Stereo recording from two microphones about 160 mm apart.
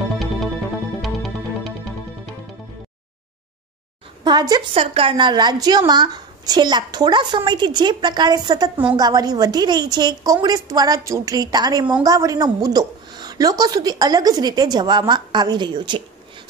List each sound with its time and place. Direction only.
1.0 s music: centre (ahead or behind)
4.2 s a woman's voice: 25° right (ahead or behind)